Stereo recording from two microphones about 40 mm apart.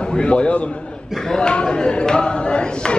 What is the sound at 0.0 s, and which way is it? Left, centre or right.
Speech, left.